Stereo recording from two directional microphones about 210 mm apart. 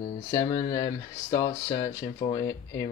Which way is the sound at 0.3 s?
20° left (ahead or behind).